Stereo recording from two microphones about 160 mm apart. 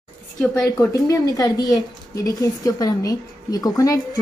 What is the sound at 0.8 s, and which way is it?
A woman's voice, 20° left (ahead or behind).